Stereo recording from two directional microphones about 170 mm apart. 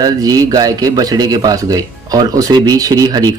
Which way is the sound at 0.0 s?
20° right (ahead or behind).